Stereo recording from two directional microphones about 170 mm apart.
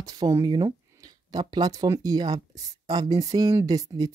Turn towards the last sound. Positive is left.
turn(degrees=-20)  # may be behind; listen again after turning